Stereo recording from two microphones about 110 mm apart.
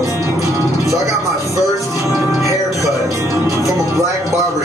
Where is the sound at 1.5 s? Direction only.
30° right (ahead or behind).